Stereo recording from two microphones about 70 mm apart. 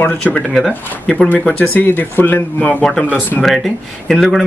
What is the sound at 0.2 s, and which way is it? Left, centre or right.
Speech, left.